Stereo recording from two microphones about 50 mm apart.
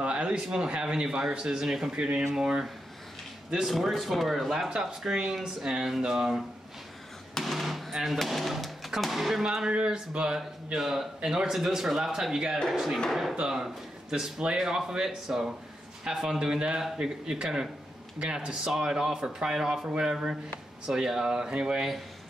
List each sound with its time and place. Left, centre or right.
0.0 s speech: right; by 9.4 s centre
9.4 s speech: centre